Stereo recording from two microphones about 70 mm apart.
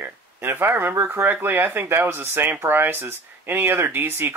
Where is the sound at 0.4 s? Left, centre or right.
Right.